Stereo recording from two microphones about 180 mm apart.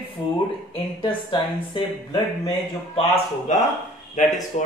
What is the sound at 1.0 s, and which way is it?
Speech, 25° left (ahead or behind).